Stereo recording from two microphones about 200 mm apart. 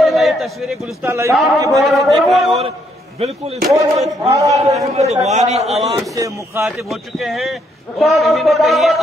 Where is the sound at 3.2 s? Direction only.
30° right (ahead or behind).